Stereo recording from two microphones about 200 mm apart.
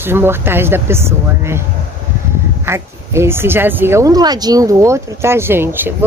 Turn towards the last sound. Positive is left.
turn(degrees=-10)  # may be behind; listen again after turning